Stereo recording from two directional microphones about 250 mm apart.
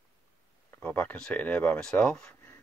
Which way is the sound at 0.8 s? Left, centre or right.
Centre.